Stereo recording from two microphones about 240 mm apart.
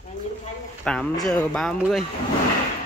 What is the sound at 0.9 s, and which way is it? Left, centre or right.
Speech, centre.